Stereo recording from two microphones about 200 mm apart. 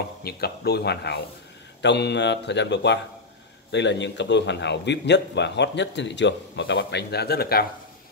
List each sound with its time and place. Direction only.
0.2 s a man's voice: 50° left (ahead or behind)